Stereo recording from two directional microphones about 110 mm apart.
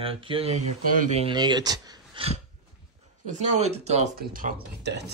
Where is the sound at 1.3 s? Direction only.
40° right (ahead or behind).